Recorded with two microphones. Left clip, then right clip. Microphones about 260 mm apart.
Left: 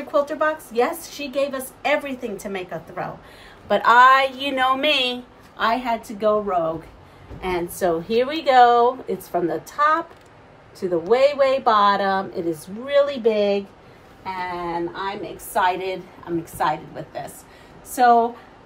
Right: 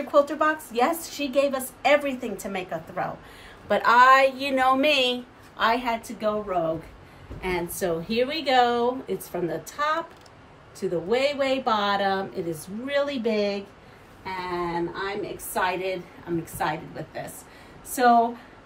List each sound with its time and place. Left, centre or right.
0.1 s a woman's voice: centre
7.4 s a woman's voice: left